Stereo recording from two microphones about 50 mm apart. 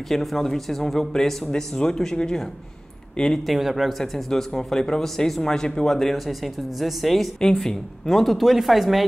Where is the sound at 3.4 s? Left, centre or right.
Centre.